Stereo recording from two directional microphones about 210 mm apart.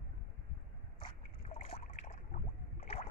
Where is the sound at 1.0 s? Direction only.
25° left (ahead or behind).